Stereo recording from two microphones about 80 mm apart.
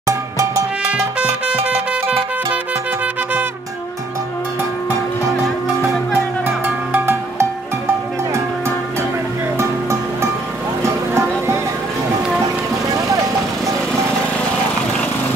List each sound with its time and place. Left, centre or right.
0.0 s music: right
6.4 s music: right
9.6 s music: right